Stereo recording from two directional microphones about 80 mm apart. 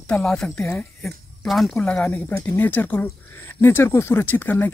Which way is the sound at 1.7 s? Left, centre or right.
Centre.